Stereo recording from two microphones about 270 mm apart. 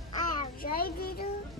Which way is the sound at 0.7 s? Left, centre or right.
Left.